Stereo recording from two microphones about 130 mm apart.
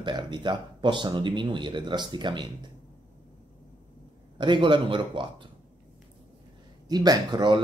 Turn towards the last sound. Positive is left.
turn(degrees=-35)  # may be behind; listen again after turning